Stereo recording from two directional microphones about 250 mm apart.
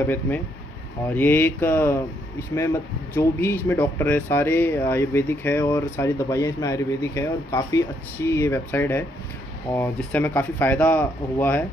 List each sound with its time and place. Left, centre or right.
0.0 s speech: centre